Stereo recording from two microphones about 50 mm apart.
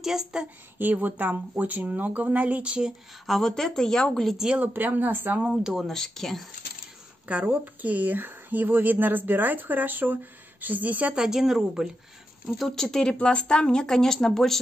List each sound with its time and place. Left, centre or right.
0.0 s speech: centre
0.7 s speech: right
3.3 s speech: centre
4.4 s speech: centre
4.7 s speech: right
5.6 s speech: centre
5.9 s speech: centre
7.4 s speech: right
11.1 s speech: centre
12.5 s speech: centre
13.2 s speech: left